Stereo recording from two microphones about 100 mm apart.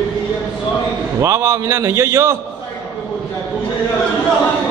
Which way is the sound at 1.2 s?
30° right (ahead or behind).